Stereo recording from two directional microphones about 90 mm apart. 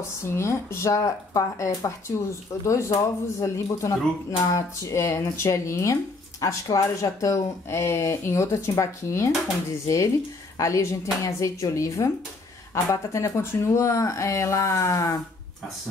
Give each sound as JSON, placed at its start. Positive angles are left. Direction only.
{"t": 0.2, "sound": "speech", "side_deg": 30}